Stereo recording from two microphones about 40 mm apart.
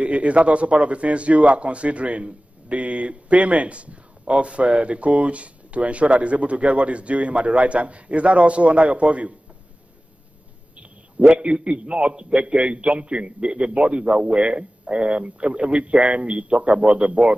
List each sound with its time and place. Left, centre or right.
0.0 s a man's voice: right
11.3 s speech: right